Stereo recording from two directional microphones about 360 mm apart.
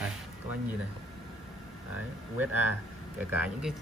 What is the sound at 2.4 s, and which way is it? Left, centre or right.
Speech, centre.